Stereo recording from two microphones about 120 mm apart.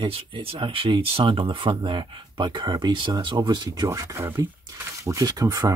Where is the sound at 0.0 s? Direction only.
45° right (ahead or behind).